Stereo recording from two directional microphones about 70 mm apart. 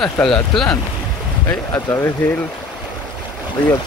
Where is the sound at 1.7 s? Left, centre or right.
Left.